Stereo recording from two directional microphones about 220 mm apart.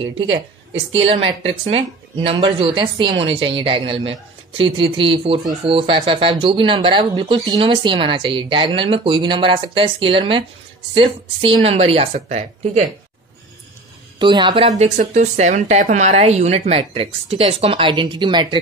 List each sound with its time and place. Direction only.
0.9 s speech: 25° right (ahead or behind)
14.2 s speech: 20° right (ahead or behind)